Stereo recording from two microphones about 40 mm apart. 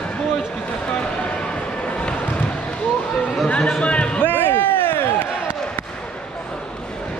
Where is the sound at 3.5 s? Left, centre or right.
Left.